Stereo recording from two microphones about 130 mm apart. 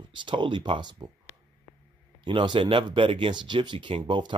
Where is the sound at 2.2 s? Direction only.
40° right (ahead or behind).